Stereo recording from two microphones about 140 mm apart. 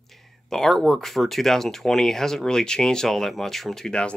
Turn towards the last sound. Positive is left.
turn(degrees=5)  # may be behind; listen again after turning